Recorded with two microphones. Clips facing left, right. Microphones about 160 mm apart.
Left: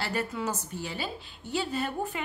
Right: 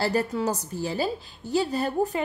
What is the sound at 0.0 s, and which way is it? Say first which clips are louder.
A woman's voice: right 6 dB; 35° right (ahead or behind).